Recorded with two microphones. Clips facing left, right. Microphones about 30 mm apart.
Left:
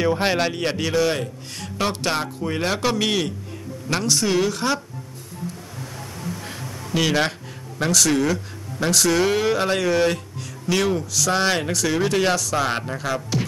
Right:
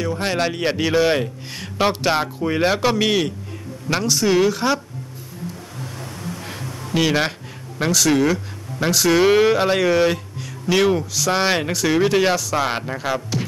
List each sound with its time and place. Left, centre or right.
0.0 s speech: centre
0.3 s a man's voice: centre
6.9 s a man's voice: centre